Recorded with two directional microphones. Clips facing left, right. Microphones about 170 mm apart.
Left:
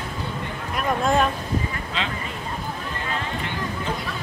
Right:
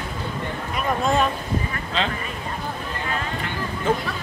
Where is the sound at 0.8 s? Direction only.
Centre (ahead or behind).